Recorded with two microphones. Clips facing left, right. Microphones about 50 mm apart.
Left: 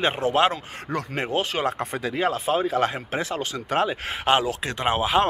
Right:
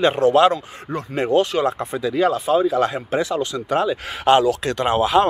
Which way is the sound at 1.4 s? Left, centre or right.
Left.